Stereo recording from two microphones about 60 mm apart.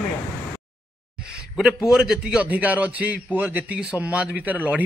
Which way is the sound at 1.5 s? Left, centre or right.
Centre.